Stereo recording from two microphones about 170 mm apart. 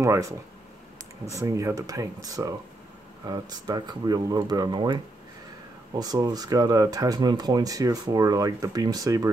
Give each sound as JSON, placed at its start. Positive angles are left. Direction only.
{"t": 0.0, "sound": "speech", "side_deg": -20}